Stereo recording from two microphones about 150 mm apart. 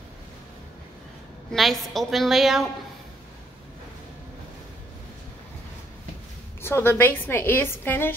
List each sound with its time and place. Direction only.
1.5 s a woman's voice: centre (ahead or behind)
6.6 s a woman's voice: 15° left (ahead or behind)